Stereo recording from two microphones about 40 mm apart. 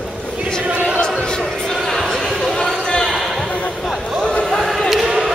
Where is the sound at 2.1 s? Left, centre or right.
Centre.